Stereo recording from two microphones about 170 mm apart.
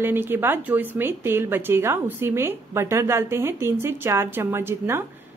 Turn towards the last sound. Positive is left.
turn(degrees=-15)  # may be behind; listen again after turning